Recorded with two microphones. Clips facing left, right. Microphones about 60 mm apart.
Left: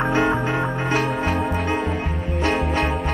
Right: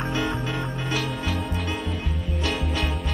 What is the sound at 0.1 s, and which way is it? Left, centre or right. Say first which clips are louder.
Music: left 7 dB; left.